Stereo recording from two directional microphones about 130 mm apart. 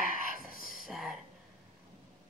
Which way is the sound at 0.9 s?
Centre (ahead or behind).